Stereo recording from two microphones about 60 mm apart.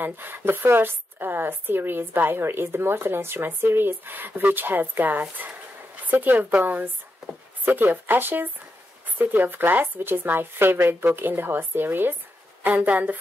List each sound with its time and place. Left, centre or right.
0.0 s speech: right